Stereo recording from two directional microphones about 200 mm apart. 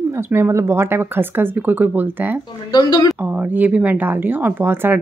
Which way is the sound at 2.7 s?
20° left (ahead or behind).